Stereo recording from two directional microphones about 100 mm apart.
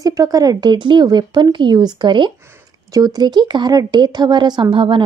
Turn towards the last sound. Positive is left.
turn(degrees=-65)  # may be behind; listen again after turning